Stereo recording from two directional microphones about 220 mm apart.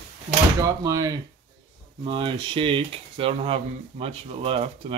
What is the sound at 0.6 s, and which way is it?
Speech, 15° right (ahead or behind).